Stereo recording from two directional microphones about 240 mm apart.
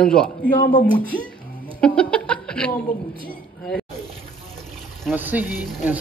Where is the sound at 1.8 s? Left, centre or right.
Centre.